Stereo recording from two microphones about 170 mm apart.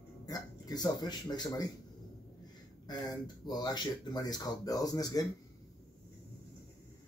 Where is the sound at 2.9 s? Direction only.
25° left (ahead or behind).